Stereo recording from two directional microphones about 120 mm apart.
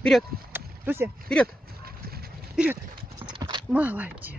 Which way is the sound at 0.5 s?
20° right (ahead or behind).